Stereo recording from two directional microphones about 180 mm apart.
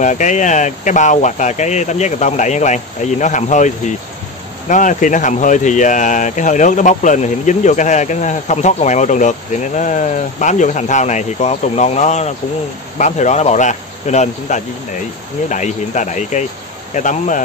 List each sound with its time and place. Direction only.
0.0 s speech: 45° left (ahead or behind)